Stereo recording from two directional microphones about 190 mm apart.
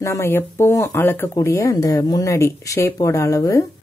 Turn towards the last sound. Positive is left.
turn(degrees=15)  # may be behind; listen again after turning